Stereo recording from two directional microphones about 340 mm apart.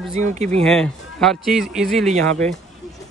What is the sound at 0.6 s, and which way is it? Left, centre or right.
Speech, centre.